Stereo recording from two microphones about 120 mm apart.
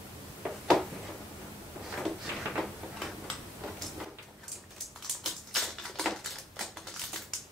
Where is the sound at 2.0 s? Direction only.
Centre (ahead or behind).